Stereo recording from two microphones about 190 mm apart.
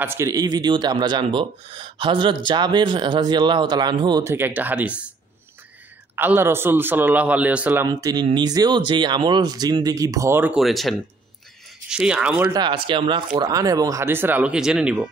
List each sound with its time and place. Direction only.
0.0 s speech: 15° right (ahead or behind)
4.2 s a man's voice: 10° right (ahead or behind)
6.1 s a man's voice: 10° right (ahead or behind)
12.5 s a man's voice: 25° right (ahead or behind); by 15.0 s 5° right (ahead or behind)